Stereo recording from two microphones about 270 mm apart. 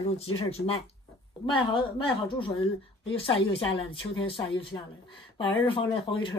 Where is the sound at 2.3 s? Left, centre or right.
Centre.